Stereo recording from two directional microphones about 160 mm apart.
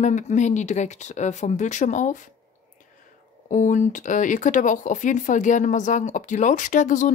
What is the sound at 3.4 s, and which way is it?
A woman's voice, 50° left (ahead or behind).